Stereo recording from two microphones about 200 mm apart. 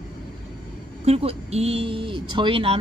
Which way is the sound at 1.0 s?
30° right (ahead or behind).